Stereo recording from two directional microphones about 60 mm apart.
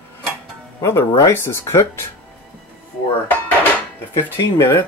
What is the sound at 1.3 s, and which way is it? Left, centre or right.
Speech, left.